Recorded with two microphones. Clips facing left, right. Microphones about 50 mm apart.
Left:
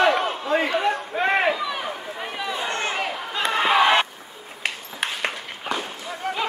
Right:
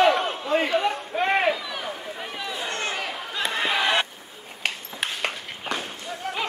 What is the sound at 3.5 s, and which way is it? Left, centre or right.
Crowd, left.